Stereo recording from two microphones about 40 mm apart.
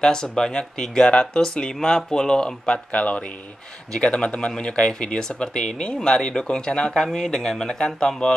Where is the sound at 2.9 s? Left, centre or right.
Left; by 8.2 s centre.